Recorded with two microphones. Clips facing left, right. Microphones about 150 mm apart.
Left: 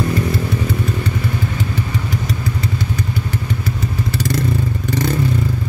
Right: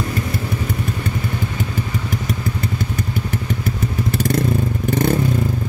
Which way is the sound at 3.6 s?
50° right (ahead or behind).